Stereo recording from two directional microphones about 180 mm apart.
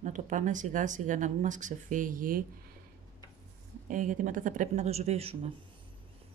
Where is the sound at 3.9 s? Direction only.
45° right (ahead or behind).